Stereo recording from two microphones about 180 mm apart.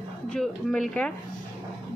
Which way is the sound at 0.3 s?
5° left (ahead or behind).